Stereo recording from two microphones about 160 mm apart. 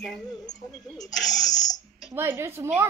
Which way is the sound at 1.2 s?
25° left (ahead or behind).